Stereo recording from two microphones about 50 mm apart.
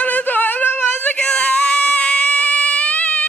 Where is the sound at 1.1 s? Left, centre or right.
Left.